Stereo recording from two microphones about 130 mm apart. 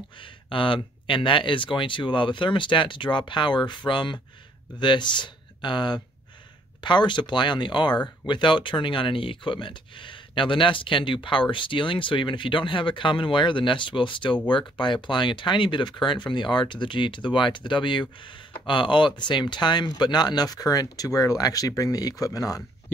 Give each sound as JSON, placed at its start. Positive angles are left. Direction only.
{"t": 0.2, "sound": "speech", "side_deg": 40}